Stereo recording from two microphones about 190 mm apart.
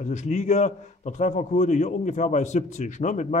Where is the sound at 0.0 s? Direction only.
40° left (ahead or behind).